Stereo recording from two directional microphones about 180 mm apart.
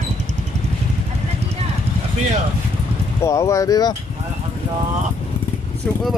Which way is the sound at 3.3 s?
15° left (ahead or behind).